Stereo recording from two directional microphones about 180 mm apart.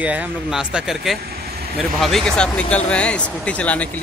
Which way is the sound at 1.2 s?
60° right (ahead or behind).